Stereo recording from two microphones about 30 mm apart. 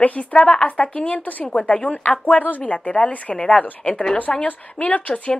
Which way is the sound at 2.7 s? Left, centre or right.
Left.